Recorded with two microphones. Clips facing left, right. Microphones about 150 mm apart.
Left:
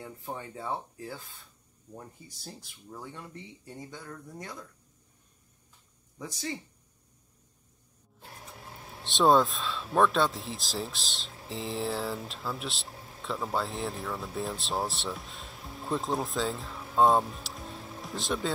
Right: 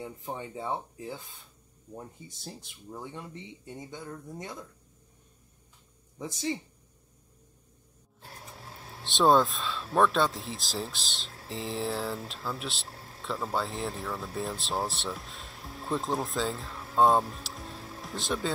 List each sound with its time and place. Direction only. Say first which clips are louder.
0.0 s speech: right 2 dB; 20° right (ahead or behind)
6.1 s speech: right 4 dB; 25° right (ahead or behind)
9.0 s speech: even; centre (ahead or behind)